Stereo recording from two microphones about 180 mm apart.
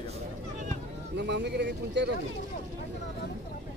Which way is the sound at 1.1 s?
70° right (ahead or behind).